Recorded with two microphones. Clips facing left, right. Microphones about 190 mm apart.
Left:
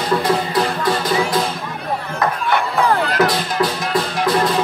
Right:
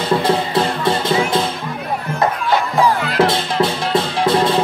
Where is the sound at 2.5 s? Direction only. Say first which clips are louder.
Right 1 dB; 55° left (ahead or behind).